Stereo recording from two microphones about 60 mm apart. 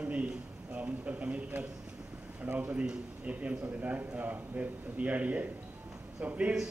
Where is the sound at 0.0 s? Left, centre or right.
Right.